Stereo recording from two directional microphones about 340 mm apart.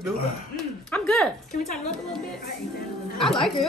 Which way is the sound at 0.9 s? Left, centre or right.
Centre.